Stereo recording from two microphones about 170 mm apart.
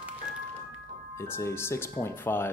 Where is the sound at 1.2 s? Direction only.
15° left (ahead or behind).